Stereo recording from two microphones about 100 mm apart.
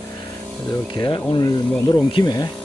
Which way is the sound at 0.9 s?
50° left (ahead or behind).